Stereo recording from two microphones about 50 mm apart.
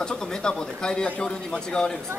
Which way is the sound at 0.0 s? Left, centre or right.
Centre.